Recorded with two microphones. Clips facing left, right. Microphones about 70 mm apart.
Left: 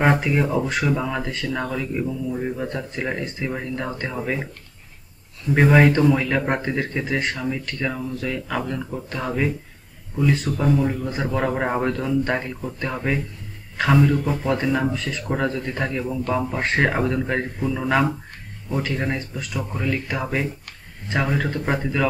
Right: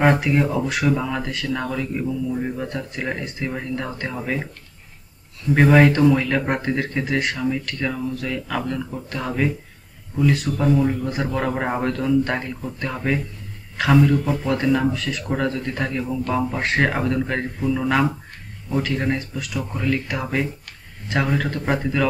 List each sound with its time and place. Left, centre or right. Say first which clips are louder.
0.3 s speech: right 1 dB; centre
5.5 s speech: right 1 dB; centre
10.6 s speech: right 3 dB; centre